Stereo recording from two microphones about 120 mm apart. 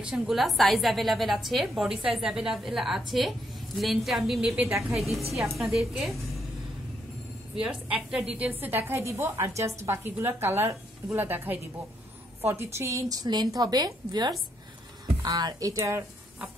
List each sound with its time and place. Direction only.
0.0 s a woman's voice: centre (ahead or behind)
4.6 s a woman's voice: 25° right (ahead or behind)
4.9 s a woman's voice: centre (ahead or behind)
7.5 s a woman's voice: 5° right (ahead or behind); by 16.0 s 25° right (ahead or behind)